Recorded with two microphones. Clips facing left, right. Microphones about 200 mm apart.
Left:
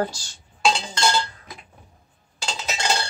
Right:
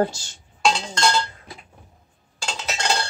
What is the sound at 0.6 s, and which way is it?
Chink, centre (ahead or behind).